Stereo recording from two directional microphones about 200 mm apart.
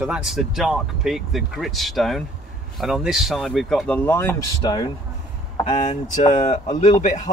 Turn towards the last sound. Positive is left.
turn(degrees=40)  # may be behind; listen again after turning